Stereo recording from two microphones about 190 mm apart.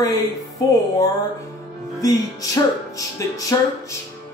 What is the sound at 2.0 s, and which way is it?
Music, 20° left (ahead or behind).